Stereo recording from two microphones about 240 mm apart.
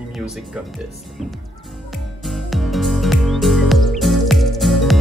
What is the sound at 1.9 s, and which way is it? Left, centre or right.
Music, centre.